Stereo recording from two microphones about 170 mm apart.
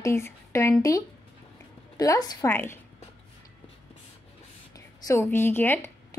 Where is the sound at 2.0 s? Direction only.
20° left (ahead or behind).